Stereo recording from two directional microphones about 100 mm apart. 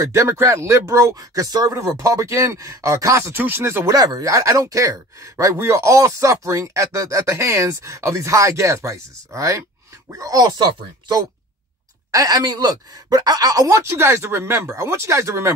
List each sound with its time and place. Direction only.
0.0 s speech: 30° right (ahead or behind)
3.9 s speech: 40° right (ahead or behind)